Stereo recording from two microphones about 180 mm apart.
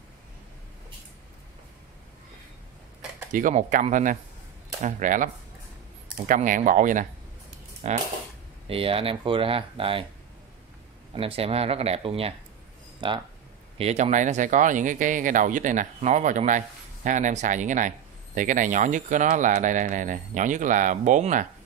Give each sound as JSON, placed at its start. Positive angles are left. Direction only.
{"t": 3.3, "sound": "speech", "side_deg": -45}
{"t": 11.1, "sound": "speech", "side_deg": -30}
{"t": 13.7, "sound": "speech", "side_deg": -35}